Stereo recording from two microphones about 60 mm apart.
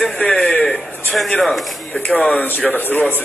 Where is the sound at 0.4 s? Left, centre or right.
Centre.